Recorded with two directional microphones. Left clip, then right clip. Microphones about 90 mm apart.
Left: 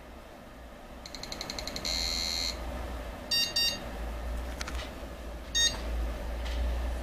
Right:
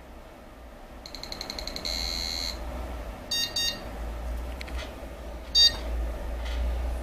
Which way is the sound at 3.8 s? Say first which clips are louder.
Right 1 dB; 15° left (ahead or behind).